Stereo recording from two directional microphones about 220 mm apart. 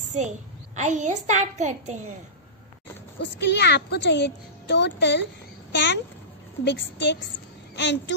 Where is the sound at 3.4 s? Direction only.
50° left (ahead or behind).